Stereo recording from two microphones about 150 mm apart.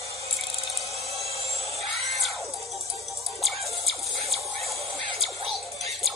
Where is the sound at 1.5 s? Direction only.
45° right (ahead or behind).